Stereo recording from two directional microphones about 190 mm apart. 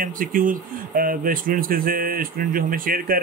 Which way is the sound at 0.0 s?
45° right (ahead or behind).